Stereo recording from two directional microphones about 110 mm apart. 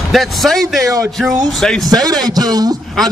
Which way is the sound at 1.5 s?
5° left (ahead or behind).